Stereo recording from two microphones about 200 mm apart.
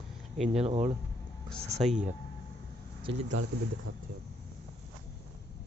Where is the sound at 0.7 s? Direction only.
35° right (ahead or behind).